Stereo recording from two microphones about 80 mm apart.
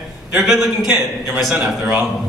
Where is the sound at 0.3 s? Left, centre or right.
Centre.